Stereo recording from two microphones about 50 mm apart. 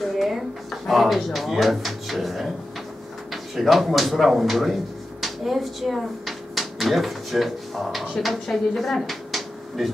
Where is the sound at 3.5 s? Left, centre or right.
Centre.